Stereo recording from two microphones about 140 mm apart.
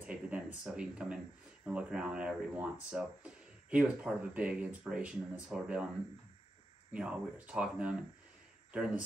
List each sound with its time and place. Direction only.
0.0 s speech: 10° right (ahead or behind)
6.9 s speech: 10° right (ahead or behind)